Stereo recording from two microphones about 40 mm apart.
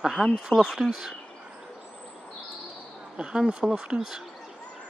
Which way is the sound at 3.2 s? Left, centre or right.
Right.